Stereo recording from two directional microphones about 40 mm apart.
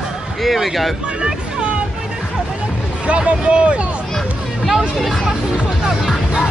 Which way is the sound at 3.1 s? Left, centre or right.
Right.